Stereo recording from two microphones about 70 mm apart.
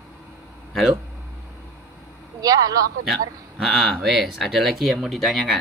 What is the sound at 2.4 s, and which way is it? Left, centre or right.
Speech, right.